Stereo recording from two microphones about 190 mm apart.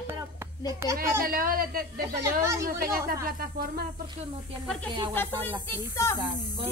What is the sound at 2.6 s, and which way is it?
Speech, 50° right (ahead or behind).